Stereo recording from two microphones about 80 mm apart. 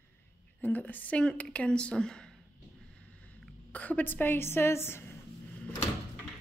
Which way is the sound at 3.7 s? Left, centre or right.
Centre.